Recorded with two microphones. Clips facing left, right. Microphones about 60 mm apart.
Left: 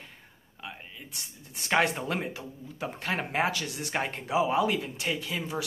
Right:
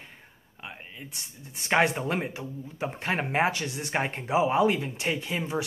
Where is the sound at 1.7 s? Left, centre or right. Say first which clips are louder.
Right 2 dB; centre.